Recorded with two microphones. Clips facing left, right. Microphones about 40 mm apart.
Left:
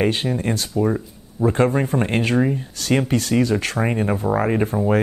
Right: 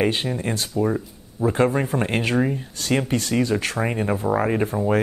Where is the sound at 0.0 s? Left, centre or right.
Centre.